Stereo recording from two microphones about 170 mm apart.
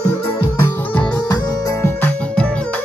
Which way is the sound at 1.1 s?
25° left (ahead or behind).